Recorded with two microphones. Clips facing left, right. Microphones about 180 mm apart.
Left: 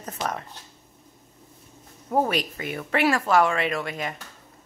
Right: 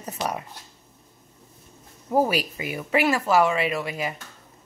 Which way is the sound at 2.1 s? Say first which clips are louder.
Right 2 dB; 5° right (ahead or behind).